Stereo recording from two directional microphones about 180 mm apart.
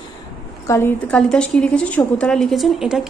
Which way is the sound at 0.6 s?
15° left (ahead or behind).